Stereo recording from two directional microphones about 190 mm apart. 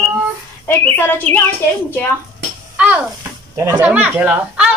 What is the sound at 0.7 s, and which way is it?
Speech, 10° left (ahead or behind).